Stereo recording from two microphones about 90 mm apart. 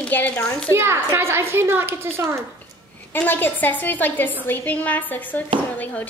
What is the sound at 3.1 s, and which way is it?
A woman's voice, 20° left (ahead or behind).